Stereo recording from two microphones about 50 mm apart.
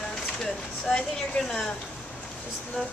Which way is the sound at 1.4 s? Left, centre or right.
Centre.